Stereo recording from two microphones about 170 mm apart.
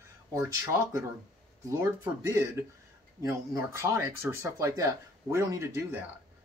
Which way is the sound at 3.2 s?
15° right (ahead or behind).